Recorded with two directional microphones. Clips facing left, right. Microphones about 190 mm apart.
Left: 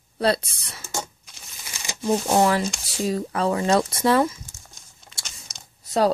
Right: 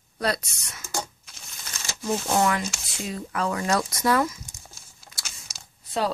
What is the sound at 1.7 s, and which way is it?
Shuffling cards, 15° left (ahead or behind).